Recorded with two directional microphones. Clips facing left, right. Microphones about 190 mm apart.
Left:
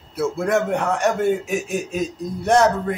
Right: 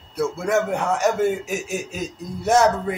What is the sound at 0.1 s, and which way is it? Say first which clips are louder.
A man's voice: left 1 dB; centre (ahead or behind).